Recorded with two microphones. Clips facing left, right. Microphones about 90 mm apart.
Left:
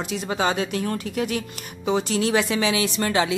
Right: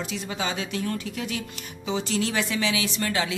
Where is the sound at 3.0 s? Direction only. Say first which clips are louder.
Left 7 dB; 25° left (ahead or behind).